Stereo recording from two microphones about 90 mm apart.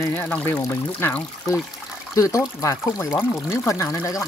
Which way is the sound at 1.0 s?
30° left (ahead or behind).